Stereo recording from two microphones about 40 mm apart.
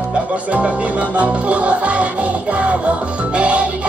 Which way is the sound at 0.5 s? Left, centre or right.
Right.